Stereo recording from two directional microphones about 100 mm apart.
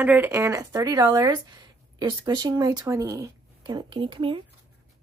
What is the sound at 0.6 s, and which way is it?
Speech, 40° right (ahead or behind).